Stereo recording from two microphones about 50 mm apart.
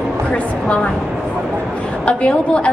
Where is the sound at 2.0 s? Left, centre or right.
Left.